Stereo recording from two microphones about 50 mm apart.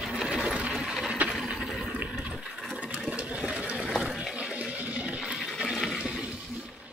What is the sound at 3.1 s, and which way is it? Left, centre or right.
Sewing machine, right.